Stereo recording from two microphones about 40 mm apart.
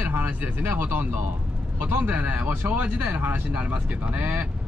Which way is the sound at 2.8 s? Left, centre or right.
Right.